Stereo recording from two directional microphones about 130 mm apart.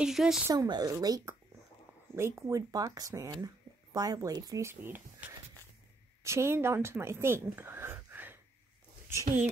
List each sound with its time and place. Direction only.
0.0 s speech: 5° right (ahead or behind)
0.5 s speech: 30° right (ahead or behind)
6.2 s a woman's voice: 20° right (ahead or behind)